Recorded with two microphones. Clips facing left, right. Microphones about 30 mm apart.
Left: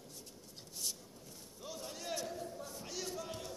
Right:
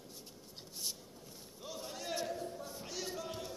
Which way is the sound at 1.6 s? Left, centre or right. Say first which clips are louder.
Right 1 dB; centre.